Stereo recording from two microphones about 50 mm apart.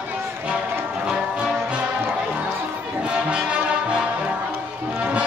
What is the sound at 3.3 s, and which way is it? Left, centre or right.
Music, right.